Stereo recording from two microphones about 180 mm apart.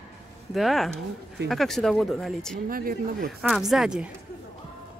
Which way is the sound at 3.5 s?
Centre (ahead or behind).